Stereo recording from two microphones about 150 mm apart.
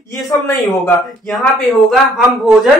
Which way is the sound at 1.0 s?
Centre (ahead or behind).